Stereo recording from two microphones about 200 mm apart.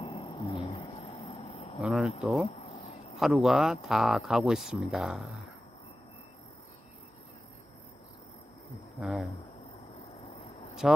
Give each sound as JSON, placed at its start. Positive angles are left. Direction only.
{"t": 0.0, "sound": "insect", "side_deg": 30}
{"t": 1.8, "sound": "speech", "side_deg": 0}
{"t": 9.0, "sound": "speech", "side_deg": 0}
{"t": 10.8, "sound": "speech", "side_deg": 0}